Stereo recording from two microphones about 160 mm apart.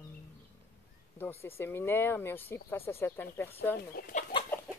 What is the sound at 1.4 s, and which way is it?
Speech, 15° left (ahead or behind).